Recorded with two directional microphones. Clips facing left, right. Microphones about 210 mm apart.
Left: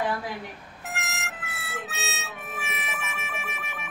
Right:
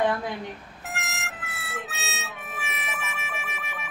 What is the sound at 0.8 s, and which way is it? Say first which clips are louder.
Harmonica: even; centre (ahead or behind).